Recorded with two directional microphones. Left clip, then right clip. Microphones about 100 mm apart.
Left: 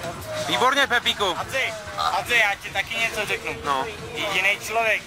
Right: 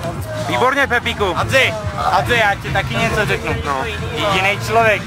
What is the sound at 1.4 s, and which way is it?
Speech, 60° right (ahead or behind).